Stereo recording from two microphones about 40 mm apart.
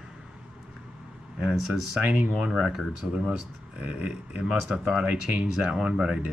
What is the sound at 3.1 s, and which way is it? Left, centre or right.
Speech, right.